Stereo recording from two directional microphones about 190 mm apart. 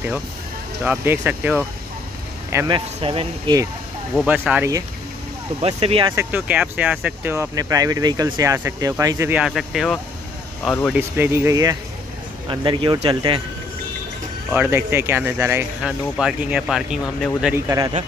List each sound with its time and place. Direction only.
0.8 s speech: 10° right (ahead or behind)
2.5 s speech: 25° right (ahead or behind)
4.1 s speech: 5° right (ahead or behind)
5.6 s speech: 35° right (ahead or behind)
6.1 s speech: 10° right (ahead or behind)
9.4 s speech: centre (ahead or behind)
11.0 s speech: 10° right (ahead or behind)
14.5 s speech: 10° right (ahead or behind)
17.6 s speech: 20° right (ahead or behind)